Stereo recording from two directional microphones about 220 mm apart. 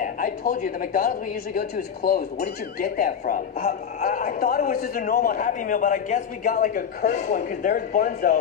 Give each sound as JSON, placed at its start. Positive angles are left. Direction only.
{"t": 0.0, "sound": "a woman's voice", "side_deg": 40}